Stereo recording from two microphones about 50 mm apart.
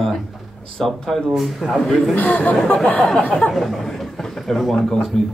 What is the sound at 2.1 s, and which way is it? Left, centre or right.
Speech, left.